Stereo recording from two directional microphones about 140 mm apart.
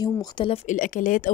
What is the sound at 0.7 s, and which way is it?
Speech, 70° left (ahead or behind).